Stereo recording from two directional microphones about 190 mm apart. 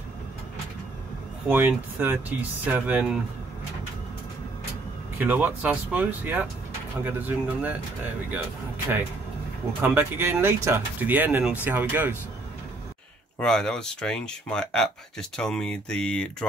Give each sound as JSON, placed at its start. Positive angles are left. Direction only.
{"t": 1.5, "sound": "speech", "side_deg": -10}
{"t": 5.2, "sound": "speech", "side_deg": -10}
{"t": 9.8, "sound": "speech", "side_deg": -10}
{"t": 13.4, "sound": "speech", "side_deg": 5}